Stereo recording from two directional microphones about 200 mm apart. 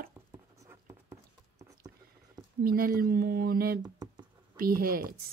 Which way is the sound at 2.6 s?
45° right (ahead or behind).